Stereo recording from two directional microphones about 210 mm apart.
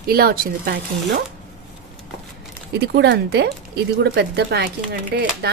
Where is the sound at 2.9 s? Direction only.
50° right (ahead or behind).